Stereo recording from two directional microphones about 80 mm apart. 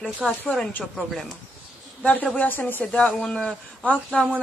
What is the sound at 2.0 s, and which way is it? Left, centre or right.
Speech, centre.